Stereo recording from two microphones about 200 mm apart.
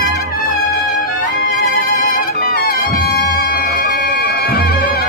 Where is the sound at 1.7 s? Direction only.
45° left (ahead or behind).